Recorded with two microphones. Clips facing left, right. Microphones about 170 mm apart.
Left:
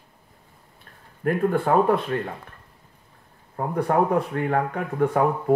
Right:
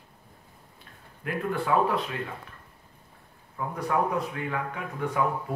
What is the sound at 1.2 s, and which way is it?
Speech, 50° left (ahead or behind).